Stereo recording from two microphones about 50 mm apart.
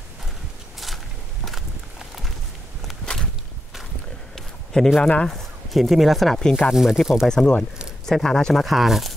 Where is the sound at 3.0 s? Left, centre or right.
Centre.